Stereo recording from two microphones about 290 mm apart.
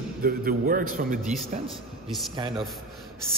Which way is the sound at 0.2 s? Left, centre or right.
Right.